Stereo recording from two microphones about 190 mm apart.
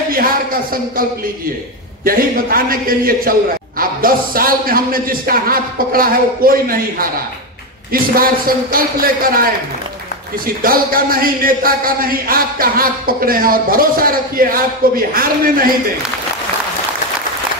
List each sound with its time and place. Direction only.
2.0 s a man's voice: 50° right (ahead or behind)